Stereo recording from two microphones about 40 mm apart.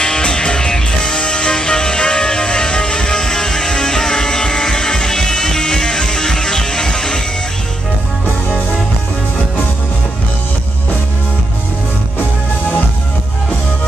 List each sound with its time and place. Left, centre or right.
0.0 s music: left